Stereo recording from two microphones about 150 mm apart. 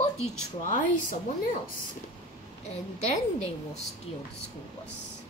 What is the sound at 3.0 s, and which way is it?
Speech, 50° left (ahead or behind).